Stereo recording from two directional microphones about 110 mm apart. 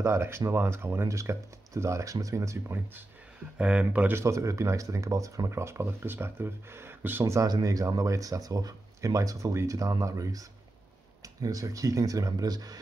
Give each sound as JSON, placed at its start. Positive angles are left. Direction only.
{"t": 0.0, "sound": "speech", "side_deg": -25}
{"t": 3.5, "sound": "speech", "side_deg": -10}
{"t": 4.1, "sound": "speech", "side_deg": -25}
{"t": 7.4, "sound": "speech", "side_deg": -35}